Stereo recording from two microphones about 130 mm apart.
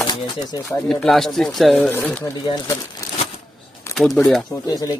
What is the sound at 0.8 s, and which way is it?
Speech, centre (ahead or behind).